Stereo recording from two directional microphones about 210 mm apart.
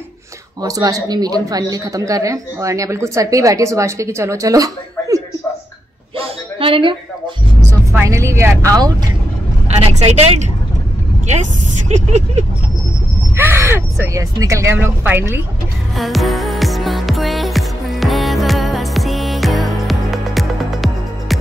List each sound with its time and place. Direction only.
0.6 s speech: 15° right (ahead or behind)
6.1 s a sound: 25° right (ahead or behind)
7.9 s speech: 15° right (ahead or behind)
9.7 s speech: 30° right (ahead or behind)
11.9 s speech: 35° right (ahead or behind)
13.4 s speech: 10° right (ahead or behind)
16.0 s music: centre (ahead or behind)